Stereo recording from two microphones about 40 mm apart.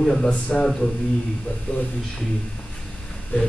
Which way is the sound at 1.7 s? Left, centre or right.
Left.